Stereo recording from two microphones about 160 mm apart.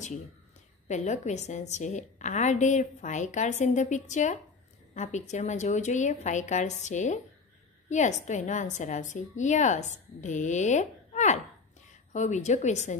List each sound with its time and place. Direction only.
0.8 s a woman's voice: 45° left (ahead or behind)